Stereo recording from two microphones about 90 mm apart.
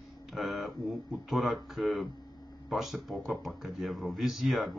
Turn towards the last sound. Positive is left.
turn(degrees=0)  # may be behind; listen again after turning